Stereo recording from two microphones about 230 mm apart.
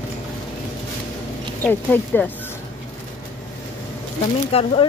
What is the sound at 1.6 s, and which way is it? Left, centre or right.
Speech, centre.